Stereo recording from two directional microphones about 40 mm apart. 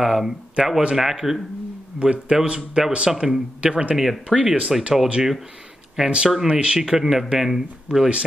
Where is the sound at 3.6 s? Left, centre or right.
Right.